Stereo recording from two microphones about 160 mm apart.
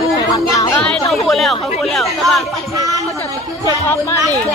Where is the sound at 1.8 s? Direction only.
Centre (ahead or behind).